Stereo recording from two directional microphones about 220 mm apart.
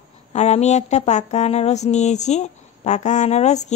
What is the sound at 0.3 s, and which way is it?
A woman's voice, 30° left (ahead or behind).